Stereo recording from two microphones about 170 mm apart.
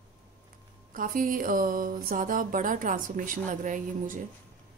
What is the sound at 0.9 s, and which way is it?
Speech, 55° right (ahead or behind).